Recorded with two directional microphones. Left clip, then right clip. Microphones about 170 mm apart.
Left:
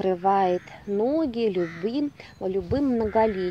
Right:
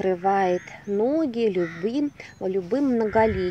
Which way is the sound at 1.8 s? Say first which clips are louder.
Right 2 dB; 5° right (ahead or behind).